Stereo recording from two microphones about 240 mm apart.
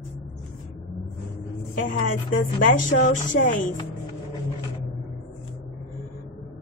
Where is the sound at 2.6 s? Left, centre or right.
Left.